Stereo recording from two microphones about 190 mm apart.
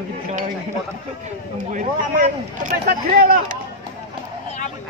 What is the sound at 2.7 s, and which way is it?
Speech, 55° right (ahead or behind).